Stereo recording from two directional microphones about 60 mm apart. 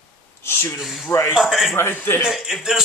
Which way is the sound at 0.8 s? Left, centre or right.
Centre.